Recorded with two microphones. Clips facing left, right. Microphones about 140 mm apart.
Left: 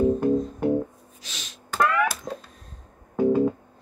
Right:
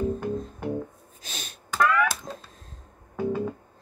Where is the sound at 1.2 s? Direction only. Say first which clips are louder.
Right 3 dB; 50° right (ahead or behind).